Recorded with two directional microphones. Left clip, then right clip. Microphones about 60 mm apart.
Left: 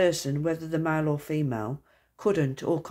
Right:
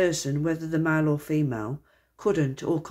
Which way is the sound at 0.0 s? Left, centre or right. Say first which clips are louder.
Even; left.